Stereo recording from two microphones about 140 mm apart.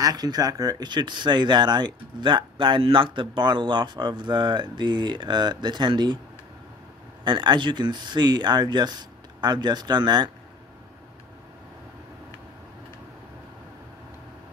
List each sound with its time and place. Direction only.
0.0 s speech: 30° right (ahead or behind)
7.2 s speech: 35° right (ahead or behind)